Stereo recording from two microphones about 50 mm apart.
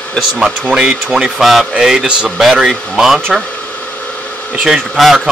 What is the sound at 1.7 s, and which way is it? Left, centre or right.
Speech, centre.